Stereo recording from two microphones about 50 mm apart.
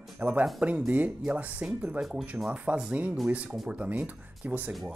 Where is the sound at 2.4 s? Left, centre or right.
Right.